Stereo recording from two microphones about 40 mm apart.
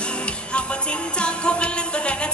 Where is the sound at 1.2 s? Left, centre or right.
Left.